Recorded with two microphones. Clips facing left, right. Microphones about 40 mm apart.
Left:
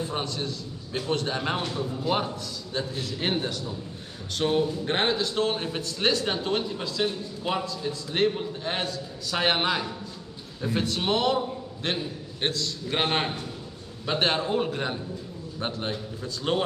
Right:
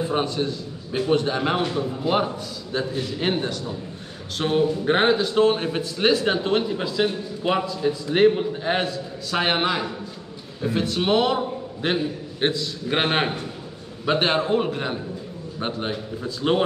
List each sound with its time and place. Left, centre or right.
0.0 s a man's voice: centre
11.0 s a man's voice: centre